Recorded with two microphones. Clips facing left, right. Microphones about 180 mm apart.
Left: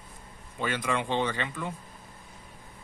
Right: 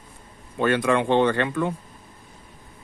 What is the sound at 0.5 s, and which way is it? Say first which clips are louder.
Speech: right 9 dB; 70° right (ahead or behind).